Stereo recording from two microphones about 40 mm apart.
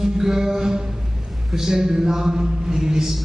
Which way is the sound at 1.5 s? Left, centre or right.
Centre.